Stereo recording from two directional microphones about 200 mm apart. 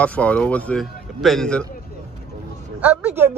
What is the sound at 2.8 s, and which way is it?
Speech, 5° right (ahead or behind).